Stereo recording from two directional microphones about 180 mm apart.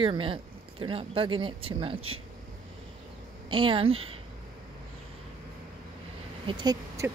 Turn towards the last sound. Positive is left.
turn(degrees=-20)  # may be behind; listen again after turning